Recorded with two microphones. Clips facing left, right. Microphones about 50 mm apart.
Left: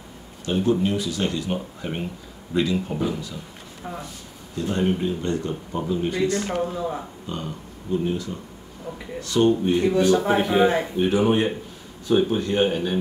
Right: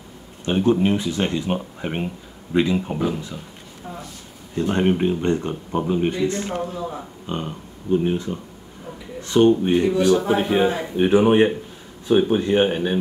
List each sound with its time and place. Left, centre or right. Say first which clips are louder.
0.5 s speech: right 3 dB; right
4.6 s speech: right 4 dB; right
6.6 s speech: left 2 dB; centre
7.2 s speech: right 7 dB; right